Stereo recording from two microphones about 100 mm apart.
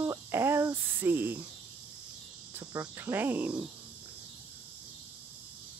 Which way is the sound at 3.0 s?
20° right (ahead or behind).